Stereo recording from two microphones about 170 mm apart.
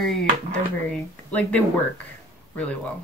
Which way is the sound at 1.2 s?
10° left (ahead or behind).